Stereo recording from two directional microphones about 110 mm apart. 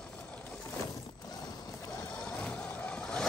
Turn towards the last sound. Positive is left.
turn(degrees=5)  # may be behind; listen again after turning